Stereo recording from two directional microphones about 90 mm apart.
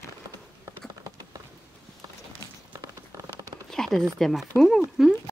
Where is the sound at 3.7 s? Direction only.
5° left (ahead or behind).